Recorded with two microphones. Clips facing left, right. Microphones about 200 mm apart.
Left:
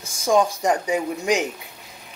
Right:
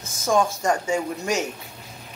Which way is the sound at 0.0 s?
15° left (ahead or behind).